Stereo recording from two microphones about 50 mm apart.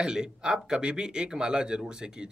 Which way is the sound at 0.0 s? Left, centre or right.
Centre.